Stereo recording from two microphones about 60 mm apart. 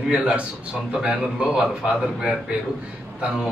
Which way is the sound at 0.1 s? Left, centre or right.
Centre.